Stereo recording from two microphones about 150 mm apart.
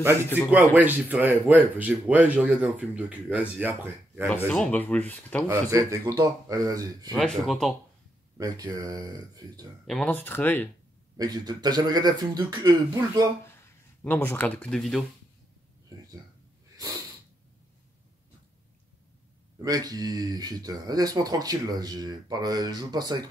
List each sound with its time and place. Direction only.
0.7 s speech: 10° right (ahead or behind)
4.5 s speech: 5° left (ahead or behind)
5.5 s speech: 20° right (ahead or behind)
7.2 s speech: centre (ahead or behind)
8.4 s speech: 25° right (ahead or behind)
9.8 s speech: 5° left (ahead or behind)
11.1 s speech: 25° right (ahead or behind)
13.5 s speech: 15° left (ahead or behind)
16.7 s snort: 25° right (ahead or behind)
19.6 s speech: 25° right (ahead or behind)